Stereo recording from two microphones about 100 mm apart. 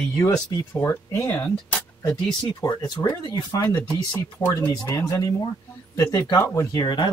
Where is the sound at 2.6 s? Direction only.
35° left (ahead or behind).